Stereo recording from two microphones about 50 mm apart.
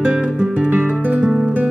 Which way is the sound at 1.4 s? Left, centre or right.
Right.